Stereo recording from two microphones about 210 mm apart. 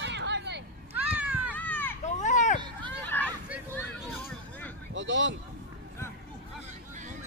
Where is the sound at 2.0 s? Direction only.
35° left (ahead or behind).